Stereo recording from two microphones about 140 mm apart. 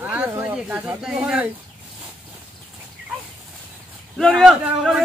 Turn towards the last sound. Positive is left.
turn(degrees=0)  # may be behind; listen again after turning